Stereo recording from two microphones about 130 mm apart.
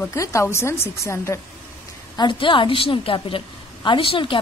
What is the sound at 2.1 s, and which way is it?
A woman's voice, 35° left (ahead or behind).